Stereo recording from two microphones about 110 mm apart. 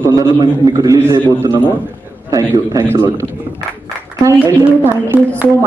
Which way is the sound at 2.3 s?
30° right (ahead or behind).